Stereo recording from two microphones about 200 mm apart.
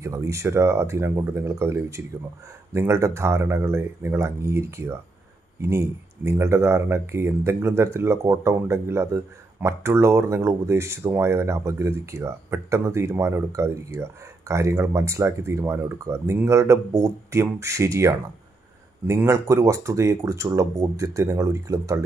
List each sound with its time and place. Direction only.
0.0 s speech: 15° right (ahead or behind)